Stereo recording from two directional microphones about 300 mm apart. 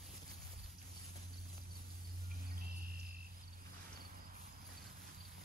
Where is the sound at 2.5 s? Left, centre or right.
Right.